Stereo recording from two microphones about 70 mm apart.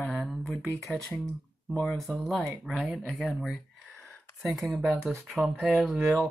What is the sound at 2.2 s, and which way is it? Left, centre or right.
Speech, centre.